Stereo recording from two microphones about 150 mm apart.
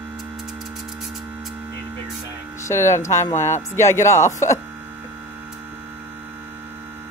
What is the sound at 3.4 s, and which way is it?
Speech, 50° left (ahead or behind).